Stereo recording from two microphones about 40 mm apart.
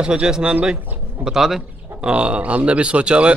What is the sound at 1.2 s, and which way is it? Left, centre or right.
Speech, centre.